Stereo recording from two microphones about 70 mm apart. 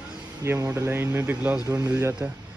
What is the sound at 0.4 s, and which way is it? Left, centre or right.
Speech, right.